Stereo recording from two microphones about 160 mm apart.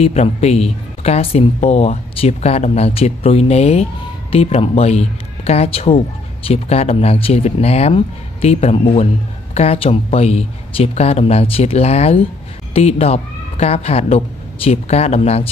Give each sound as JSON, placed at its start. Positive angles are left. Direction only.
{"t": 0.0, "sound": "speech", "side_deg": 40}